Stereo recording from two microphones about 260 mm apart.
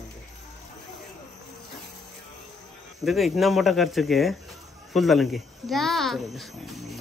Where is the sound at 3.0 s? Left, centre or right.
Centre.